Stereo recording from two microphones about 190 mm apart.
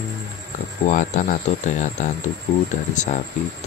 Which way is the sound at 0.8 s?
40° left (ahead or behind).